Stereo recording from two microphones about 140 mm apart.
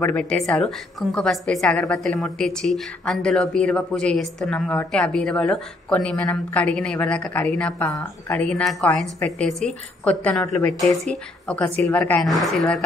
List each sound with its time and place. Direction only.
0.0 s a woman's voice: 5° left (ahead or behind)
7.9 s speech: 25° left (ahead or behind)
8.4 s a woman's voice: 5° left (ahead or behind)